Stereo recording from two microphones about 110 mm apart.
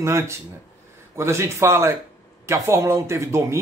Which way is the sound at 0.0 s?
25° right (ahead or behind).